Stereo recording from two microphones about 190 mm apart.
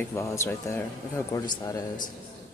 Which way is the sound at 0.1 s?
15° left (ahead or behind).